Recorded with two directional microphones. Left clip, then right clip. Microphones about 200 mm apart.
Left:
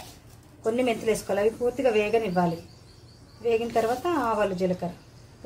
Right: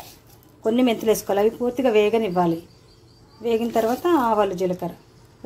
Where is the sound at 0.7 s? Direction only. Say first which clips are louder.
Right 5 dB; 40° right (ahead or behind).